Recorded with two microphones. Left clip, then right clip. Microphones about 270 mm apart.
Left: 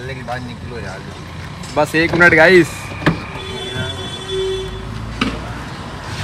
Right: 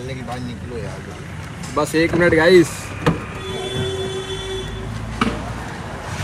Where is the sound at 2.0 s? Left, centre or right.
Centre.